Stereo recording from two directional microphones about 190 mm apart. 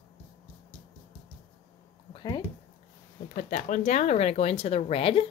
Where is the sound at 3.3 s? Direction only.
40° left (ahead or behind).